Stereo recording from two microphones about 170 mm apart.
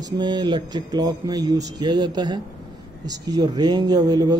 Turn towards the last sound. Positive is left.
turn(degrees=-25)  # may be behind; listen again after turning